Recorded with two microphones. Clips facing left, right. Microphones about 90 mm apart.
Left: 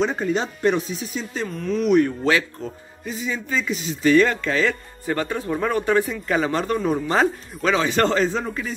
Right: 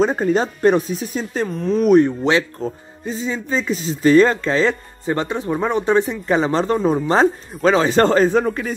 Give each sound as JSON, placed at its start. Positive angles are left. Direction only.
{"t": 0.0, "sound": "speech", "side_deg": -40}
{"t": 2.0, "sound": "speech", "side_deg": -20}
{"t": 8.3, "sound": "speech", "side_deg": -55}